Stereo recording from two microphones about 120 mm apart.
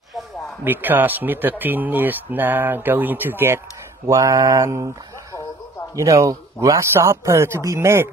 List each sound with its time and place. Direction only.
0.7 s speech: 15° right (ahead or behind)
5.9 s speech: 25° right (ahead or behind)